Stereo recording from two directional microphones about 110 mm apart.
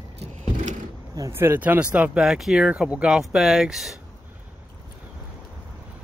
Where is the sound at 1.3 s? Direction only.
20° right (ahead or behind); by 4.0 s centre (ahead or behind).